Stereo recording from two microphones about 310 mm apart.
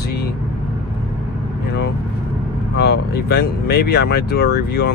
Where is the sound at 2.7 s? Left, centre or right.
Left.